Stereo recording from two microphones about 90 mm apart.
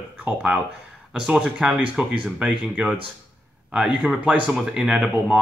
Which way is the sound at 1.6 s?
10° right (ahead or behind).